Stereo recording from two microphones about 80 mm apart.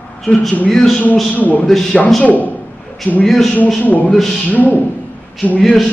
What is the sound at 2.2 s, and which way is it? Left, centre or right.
Speech, centre.